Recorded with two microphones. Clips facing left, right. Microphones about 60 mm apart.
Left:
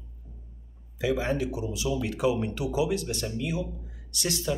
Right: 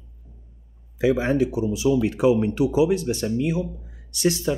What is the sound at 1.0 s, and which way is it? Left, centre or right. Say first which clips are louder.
Speech: right 7 dB; right.